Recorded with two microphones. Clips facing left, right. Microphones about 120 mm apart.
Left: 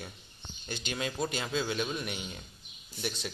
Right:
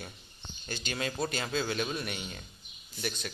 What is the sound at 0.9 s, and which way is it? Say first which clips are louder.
Speech: even; 10° left (ahead or behind).